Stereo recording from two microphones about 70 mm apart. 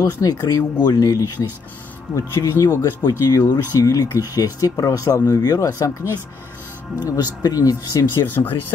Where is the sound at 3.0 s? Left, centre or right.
Left.